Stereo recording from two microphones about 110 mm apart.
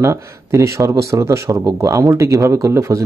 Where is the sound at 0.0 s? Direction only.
25° right (ahead or behind).